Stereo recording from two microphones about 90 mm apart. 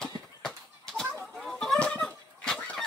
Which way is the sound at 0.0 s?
5° left (ahead or behind).